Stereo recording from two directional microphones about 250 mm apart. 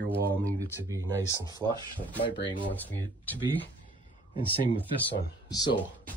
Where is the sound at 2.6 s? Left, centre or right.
Centre.